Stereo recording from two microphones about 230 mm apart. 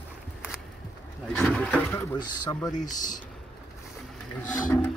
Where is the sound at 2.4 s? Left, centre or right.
Centre.